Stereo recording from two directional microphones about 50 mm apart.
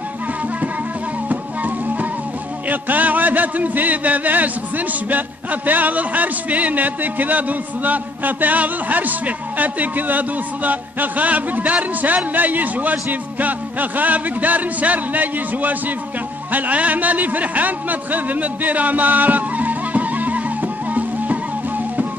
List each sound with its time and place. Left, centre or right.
1.3 s music: right
2.7 s a man's voice: right
16.5 s a sound: right